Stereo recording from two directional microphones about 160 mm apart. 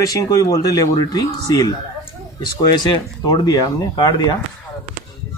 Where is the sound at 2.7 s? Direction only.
25° left (ahead or behind).